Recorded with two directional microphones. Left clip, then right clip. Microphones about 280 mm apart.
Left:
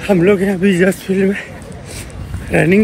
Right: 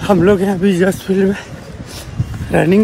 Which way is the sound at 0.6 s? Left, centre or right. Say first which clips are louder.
Left 1 dB; right.